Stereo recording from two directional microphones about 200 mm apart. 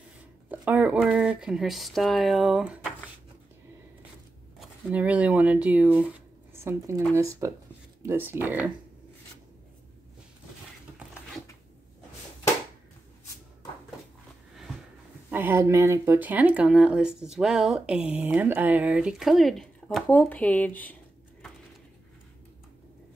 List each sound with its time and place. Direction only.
0.5 s speech: 5° right (ahead or behind)
4.6 s speech: 5° right (ahead or behind)
15.3 s speech: 10° right (ahead or behind); by 20.9 s 10° left (ahead or behind)